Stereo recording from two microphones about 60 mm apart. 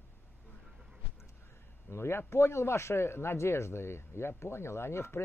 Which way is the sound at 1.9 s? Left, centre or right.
Left.